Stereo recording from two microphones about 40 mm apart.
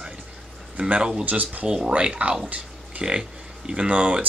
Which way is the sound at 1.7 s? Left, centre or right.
Right.